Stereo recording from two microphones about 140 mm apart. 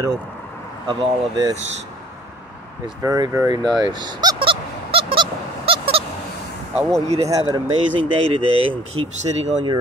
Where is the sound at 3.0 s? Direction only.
20° right (ahead or behind); by 6.0 s 45° right (ahead or behind).